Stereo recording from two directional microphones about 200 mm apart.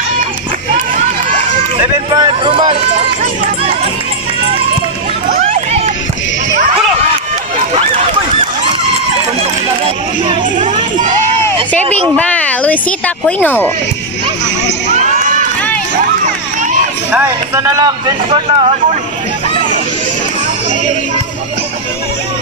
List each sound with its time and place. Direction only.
2.1 s run: 25° right (ahead or behind)
5.3 s run: 40° right (ahead or behind)
9.4 s a sound: 30° right (ahead or behind)
12.2 s speech: 5° left (ahead or behind)
17.6 s a man's voice: 20° right (ahead or behind)